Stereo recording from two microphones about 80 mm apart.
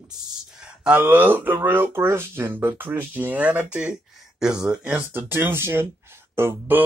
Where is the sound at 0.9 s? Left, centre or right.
Right.